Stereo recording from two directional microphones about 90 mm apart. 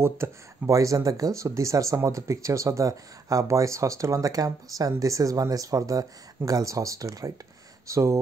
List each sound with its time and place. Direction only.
0.0 s speech: 35° right (ahead or behind)